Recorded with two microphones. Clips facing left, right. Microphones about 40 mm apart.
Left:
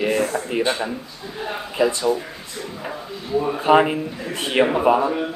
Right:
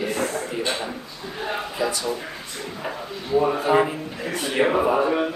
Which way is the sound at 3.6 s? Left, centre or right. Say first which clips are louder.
Left 4 dB; left.